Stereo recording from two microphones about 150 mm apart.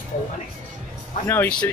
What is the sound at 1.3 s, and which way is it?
Speech, 10° left (ahead or behind).